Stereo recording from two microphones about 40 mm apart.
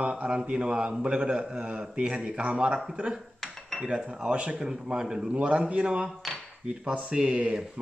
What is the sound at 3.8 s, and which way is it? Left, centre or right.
Speech, right.